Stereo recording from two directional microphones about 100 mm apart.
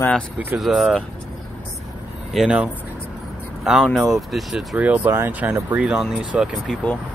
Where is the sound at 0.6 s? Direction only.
5° right (ahead or behind).